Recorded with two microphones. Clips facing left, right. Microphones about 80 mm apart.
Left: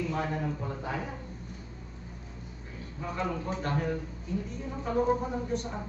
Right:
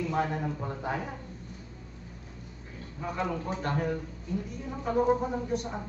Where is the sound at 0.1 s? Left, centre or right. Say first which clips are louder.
Right 2 dB; right.